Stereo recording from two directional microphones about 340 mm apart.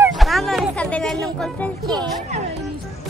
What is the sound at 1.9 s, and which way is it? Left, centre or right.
Speech, centre.